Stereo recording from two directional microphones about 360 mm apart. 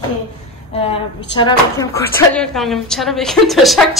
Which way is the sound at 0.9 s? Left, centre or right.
Centre.